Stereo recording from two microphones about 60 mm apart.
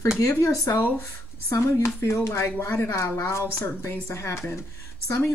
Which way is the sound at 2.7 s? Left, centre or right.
Left.